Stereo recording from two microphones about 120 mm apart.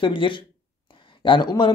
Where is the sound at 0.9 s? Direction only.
40° left (ahead or behind).